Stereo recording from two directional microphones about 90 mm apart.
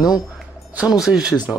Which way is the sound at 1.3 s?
50° left (ahead or behind).